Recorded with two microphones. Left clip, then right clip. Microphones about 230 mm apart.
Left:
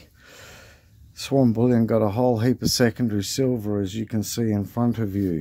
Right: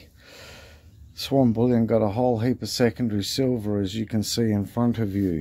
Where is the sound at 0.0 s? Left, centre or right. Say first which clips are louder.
Even; centre.